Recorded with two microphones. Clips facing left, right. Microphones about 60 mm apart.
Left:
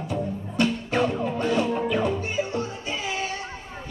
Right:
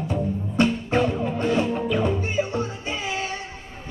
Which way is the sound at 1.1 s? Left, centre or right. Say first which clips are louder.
Right 1 dB; centre.